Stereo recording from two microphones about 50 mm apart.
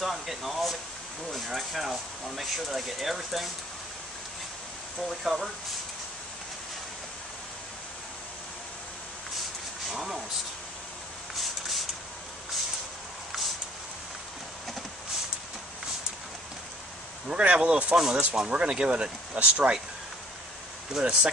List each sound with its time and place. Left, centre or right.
0.0 s speech: centre
5.2 s speech: centre
9.8 s a sound: centre
11.3 s a sound: centre
17.3 s speech: right
17.9 s speech: centre
20.9 s speech: centre